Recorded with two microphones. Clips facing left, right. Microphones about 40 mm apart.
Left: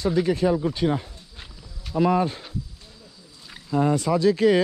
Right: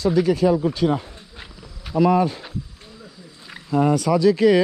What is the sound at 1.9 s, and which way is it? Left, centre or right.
Insect, centre.